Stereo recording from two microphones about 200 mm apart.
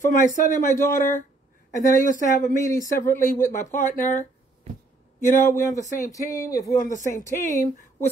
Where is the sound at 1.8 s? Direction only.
40° left (ahead or behind).